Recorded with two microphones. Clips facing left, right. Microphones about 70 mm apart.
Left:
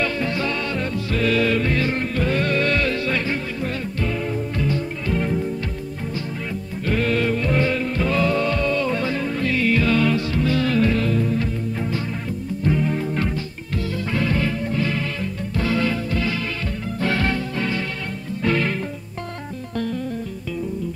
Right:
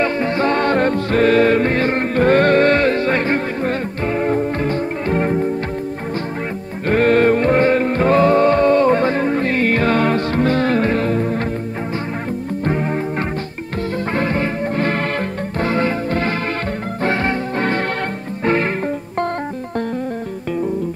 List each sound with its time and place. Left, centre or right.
0.0 s music: right
6.9 s music: right
12.6 s music: right
14.1 s music: right
15.6 s music: right
17.0 s music: right